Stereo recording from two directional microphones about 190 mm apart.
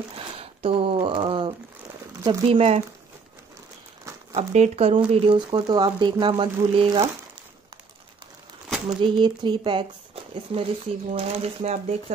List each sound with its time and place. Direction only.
0.4 s a sound: 30° right (ahead or behind)
2.2 s speech: 30° right (ahead or behind)
4.4 s speech: 35° right (ahead or behind)
8.8 s speech: 25° right (ahead or behind)